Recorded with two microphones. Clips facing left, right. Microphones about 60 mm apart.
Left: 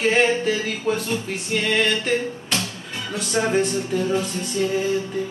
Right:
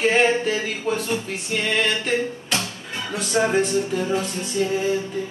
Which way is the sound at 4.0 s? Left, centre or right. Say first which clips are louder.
Left 1 dB; centre.